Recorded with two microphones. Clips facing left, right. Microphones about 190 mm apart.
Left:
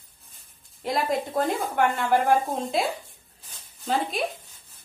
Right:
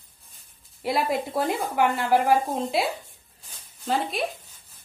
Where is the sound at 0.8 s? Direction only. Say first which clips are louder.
Right 1 dB; 5° right (ahead or behind).